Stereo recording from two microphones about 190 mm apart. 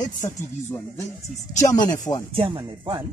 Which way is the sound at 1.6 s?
20° left (ahead or behind).